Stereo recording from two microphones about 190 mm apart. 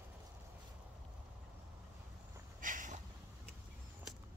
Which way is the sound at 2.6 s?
45° right (ahead or behind).